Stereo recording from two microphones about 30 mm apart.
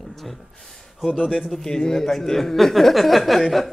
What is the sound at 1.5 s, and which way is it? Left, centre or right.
Speech, centre.